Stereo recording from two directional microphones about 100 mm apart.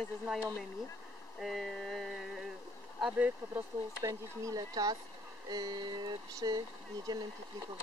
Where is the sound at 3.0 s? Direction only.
15° right (ahead or behind).